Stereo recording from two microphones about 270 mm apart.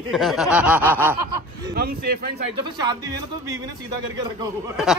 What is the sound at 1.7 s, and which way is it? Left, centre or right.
Speech, right.